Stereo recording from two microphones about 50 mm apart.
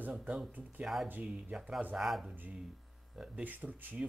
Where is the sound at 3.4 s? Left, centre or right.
Right.